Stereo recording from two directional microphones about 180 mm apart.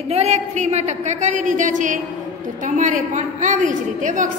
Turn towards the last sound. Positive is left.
turn(degrees=-45)  # may be behind; listen again after turning